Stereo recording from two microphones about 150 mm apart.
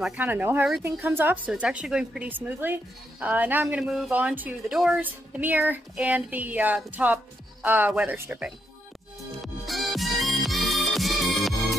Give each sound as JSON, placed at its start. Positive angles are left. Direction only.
{"t": 0.0, "sound": "speech", "side_deg": -10}
{"t": 9.4, "sound": "music", "side_deg": 0}